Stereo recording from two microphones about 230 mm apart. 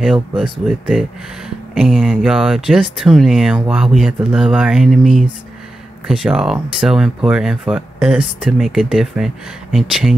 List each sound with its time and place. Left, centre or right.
0.0 s speech: centre